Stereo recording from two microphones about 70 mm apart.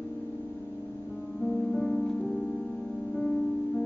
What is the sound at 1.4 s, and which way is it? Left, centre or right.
Music, centre.